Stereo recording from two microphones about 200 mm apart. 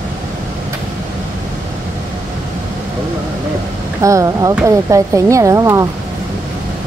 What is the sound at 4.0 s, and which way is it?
Speech, 15° right (ahead or behind).